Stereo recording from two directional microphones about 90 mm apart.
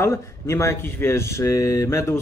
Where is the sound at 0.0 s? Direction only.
30° left (ahead or behind).